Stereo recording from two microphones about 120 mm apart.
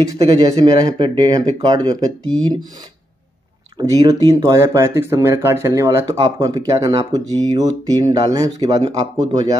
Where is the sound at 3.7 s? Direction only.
30° right (ahead or behind).